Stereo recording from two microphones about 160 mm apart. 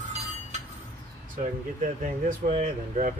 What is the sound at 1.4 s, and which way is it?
Speech, 50° right (ahead or behind).